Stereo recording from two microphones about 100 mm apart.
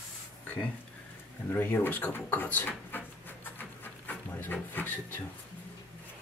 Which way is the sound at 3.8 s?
20° left (ahead or behind).